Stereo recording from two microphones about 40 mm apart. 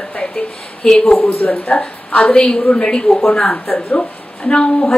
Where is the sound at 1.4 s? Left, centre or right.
Left.